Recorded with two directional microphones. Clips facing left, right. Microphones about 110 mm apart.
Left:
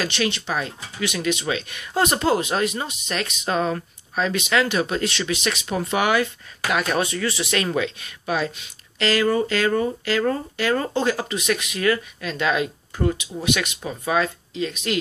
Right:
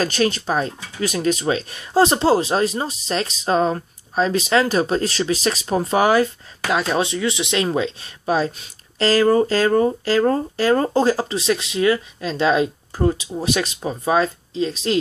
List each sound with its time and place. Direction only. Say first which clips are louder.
0.0 s speech: right 5 dB; 40° right (ahead or behind)